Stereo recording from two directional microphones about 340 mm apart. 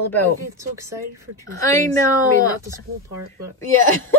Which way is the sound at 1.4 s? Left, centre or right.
Centre.